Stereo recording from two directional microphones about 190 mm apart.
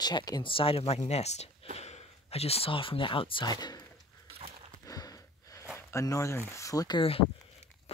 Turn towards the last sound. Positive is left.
turn(degrees=30)  # may be behind; listen again after turning